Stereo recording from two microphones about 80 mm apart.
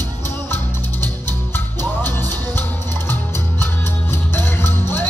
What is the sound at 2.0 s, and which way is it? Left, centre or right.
Music, left.